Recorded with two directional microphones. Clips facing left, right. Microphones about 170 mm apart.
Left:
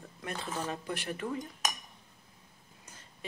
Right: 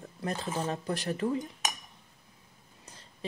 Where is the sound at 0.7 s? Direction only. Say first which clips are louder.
Right 4 dB; 40° right (ahead or behind).